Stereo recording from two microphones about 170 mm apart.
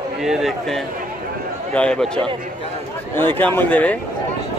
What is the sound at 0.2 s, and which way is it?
A man's voice, centre (ahead or behind).